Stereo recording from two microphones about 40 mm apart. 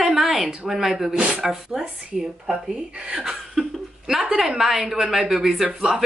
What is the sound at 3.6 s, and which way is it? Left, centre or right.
Laughter, centre.